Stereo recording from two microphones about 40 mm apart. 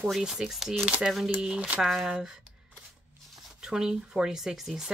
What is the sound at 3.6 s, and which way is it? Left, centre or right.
Speech, centre.